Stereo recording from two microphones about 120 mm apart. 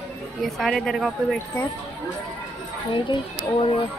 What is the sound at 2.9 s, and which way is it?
Speech, 45° left (ahead or behind).